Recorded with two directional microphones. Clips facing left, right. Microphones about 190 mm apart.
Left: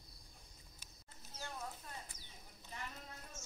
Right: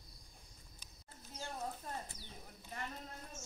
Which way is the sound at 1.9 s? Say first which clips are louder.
Right 7 dB; 45° right (ahead or behind).